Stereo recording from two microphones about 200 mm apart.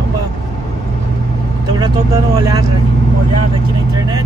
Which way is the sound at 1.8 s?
20° right (ahead or behind).